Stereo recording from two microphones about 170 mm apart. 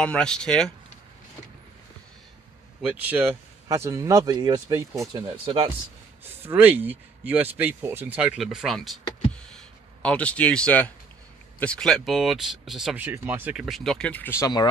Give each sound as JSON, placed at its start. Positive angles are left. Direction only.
{"t": 0.0, "sound": "speech", "side_deg": 5}
{"t": 2.8, "sound": "a man's voice", "side_deg": -10}
{"t": 6.4, "sound": "speech", "side_deg": -10}
{"t": 9.3, "sound": "a sound", "side_deg": 5}
{"t": 11.6, "sound": "speech", "side_deg": 5}